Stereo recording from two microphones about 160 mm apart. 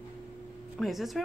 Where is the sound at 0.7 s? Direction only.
Centre (ahead or behind).